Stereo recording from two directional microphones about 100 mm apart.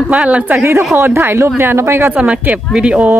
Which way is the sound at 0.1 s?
10° right (ahead or behind).